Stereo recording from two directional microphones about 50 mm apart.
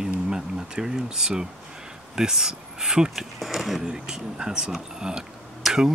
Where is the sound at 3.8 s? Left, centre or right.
Centre.